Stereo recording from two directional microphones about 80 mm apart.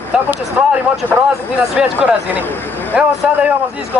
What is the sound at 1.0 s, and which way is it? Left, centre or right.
Speech, right.